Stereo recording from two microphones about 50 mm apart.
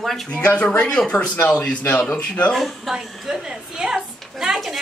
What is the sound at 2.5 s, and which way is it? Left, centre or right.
Speech, centre.